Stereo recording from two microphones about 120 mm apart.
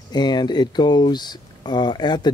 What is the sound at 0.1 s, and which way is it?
Speech, 35° left (ahead or behind).